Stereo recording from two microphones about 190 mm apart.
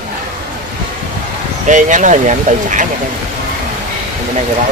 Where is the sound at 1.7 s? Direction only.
40° right (ahead or behind).